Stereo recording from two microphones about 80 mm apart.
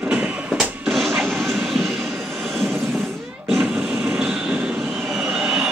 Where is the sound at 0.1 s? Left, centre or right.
Centre.